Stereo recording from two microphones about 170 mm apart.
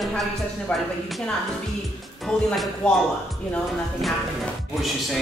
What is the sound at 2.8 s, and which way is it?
Speech, 5° left (ahead or behind).